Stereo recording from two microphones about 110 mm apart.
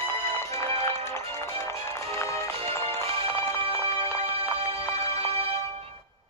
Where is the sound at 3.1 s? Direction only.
65° right (ahead or behind).